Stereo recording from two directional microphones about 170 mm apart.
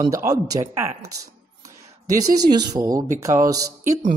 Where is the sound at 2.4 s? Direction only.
25° right (ahead or behind).